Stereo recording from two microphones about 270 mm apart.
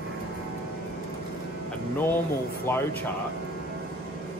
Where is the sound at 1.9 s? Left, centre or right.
Centre.